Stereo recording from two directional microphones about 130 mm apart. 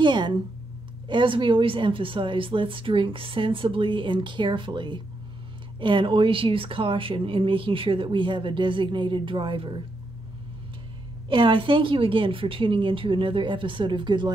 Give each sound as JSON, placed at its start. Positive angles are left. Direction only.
{"t": 0.0, "sound": "a sound", "side_deg": -35}
{"t": 1.0, "sound": "speech", "side_deg": -40}
{"t": 11.2, "sound": "speech", "side_deg": -40}